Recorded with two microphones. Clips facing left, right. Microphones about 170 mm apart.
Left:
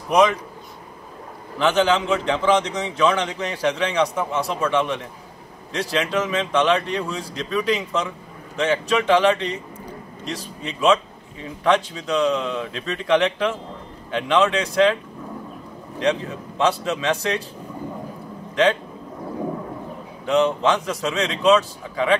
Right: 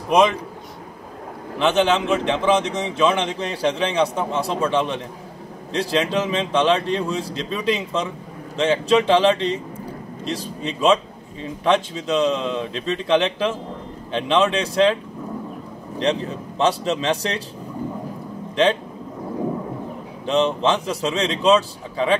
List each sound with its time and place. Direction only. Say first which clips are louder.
1.6 s a man's voice: even; 25° right (ahead or behind)
16.0 s speech: even; 30° right (ahead or behind)
20.2 s a man's voice: even; 30° right (ahead or behind)